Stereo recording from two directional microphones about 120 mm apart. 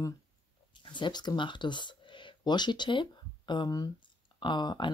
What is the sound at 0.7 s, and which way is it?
Speech, 40° left (ahead or behind).